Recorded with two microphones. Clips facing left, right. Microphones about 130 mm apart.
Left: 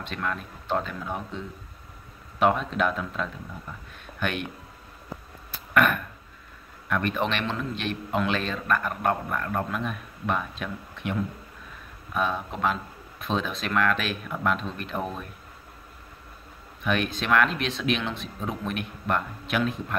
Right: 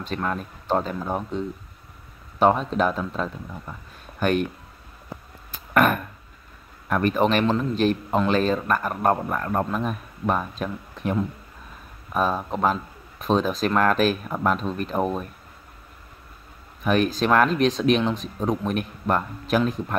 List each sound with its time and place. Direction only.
0.0 s speech: 35° right (ahead or behind)
5.8 s speech: 40° right (ahead or behind)
16.8 s speech: 40° right (ahead or behind)